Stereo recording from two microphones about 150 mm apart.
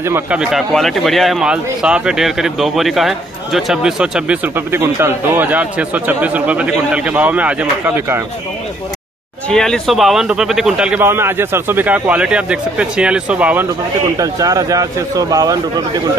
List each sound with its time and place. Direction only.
0.0 s speech: 15° right (ahead or behind)
0.4 s speech: centre (ahead or behind)
9.5 s speech: 5° left (ahead or behind)
14.1 s speech: 25° right (ahead or behind)